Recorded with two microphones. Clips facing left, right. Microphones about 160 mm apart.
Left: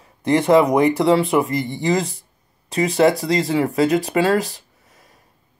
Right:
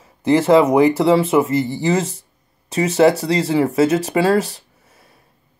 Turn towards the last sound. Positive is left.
turn(degrees=0)  # may be behind; listen again after turning